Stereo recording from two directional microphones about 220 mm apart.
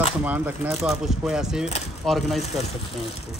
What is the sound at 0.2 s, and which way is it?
Speech, 5° right (ahead or behind).